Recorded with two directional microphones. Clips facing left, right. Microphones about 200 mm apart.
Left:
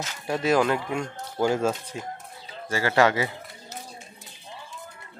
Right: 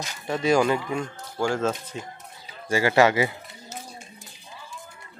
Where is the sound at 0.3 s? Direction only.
5° left (ahead or behind).